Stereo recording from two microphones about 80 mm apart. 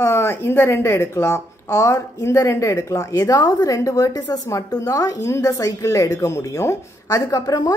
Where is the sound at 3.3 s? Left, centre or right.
Left.